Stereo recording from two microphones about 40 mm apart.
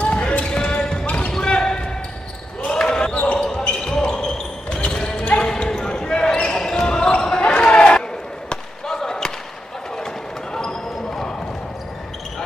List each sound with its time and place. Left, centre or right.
0.0 s basketball bounce: left
1.3 s basketball bounce: centre
3.1 s basketball bounce: left
3.4 s basketball bounce: centre
8.5 s basketball bounce: centre
10.5 s basketball bounce: centre